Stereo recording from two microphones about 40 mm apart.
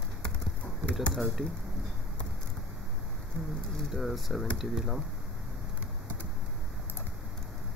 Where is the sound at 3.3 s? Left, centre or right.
Left.